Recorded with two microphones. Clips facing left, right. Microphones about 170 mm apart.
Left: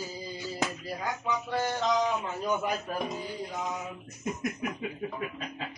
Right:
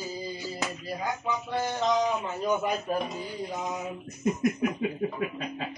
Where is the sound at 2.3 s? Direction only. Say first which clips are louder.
Right 3 dB; 10° right (ahead or behind).